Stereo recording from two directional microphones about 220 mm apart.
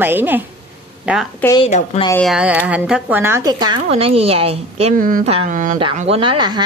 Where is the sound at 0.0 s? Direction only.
10° right (ahead or behind).